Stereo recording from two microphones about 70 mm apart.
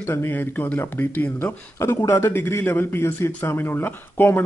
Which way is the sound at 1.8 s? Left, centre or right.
Left.